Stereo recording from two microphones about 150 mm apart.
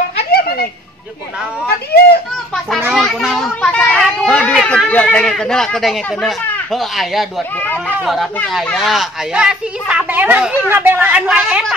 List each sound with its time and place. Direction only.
0.3 s a sound: 90° left
2.9 s children playing: centre (ahead or behind)
6.7 s speech: centre (ahead or behind)
7.5 s speech: 10° left (ahead or behind)
8.0 s speech: centre (ahead or behind)